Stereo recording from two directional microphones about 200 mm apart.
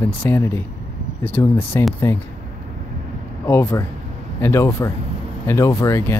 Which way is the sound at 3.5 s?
15° left (ahead or behind).